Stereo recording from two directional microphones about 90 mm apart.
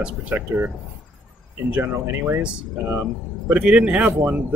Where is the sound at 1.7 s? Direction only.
25° right (ahead or behind).